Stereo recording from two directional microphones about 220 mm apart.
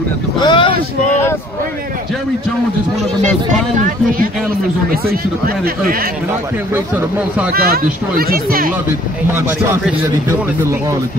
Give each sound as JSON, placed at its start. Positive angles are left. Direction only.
{"t": 0.4, "sound": "boat", "side_deg": 20}
{"t": 3.7, "sound": "speech", "side_deg": -40}
{"t": 6.7, "sound": "a man's voice", "side_deg": -10}
{"t": 7.5, "sound": "speech", "side_deg": -45}
{"t": 9.3, "sound": "a man's voice", "side_deg": -10}